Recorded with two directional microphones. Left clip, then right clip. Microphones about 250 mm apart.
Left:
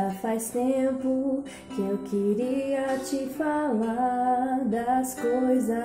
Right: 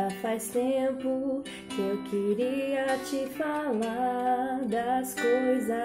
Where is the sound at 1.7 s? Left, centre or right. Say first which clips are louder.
Left 1 dB; right.